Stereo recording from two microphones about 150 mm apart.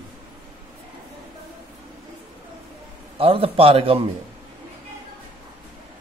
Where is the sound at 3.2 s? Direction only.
40° right (ahead or behind).